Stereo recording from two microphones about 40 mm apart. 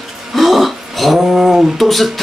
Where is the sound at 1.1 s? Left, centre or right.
Centre.